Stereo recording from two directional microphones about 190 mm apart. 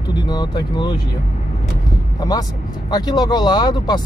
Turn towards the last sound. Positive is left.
turn(degrees=20)  # may be behind; listen again after turning